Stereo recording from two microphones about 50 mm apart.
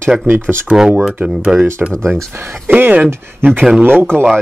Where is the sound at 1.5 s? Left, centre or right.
Right.